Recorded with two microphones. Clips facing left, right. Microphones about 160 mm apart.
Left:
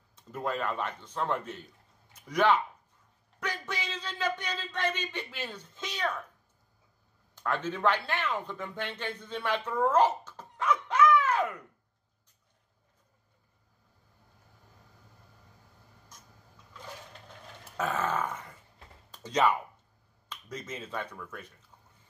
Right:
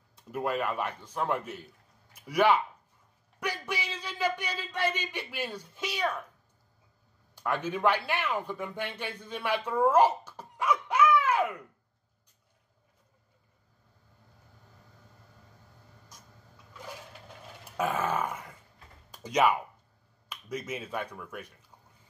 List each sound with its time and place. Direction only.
0.1 s speech: 10° right (ahead or behind)
7.3 s speech: 10° right (ahead or behind)
16.7 s a sound: 10° right (ahead or behind)
19.0 s speech: 10° right (ahead or behind)